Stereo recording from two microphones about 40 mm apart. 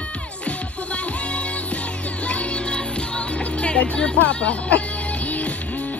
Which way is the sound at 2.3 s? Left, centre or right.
Left.